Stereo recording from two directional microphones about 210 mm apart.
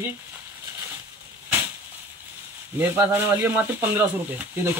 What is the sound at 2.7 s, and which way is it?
A man's voice, 10° right (ahead or behind).